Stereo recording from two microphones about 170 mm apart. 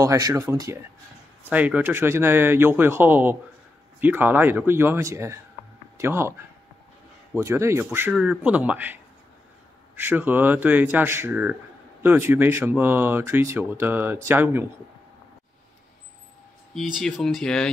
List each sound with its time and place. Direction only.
0.0 s speech: 20° right (ahead or behind)
7.3 s speech: 15° right (ahead or behind)
16.7 s speech: centre (ahead or behind)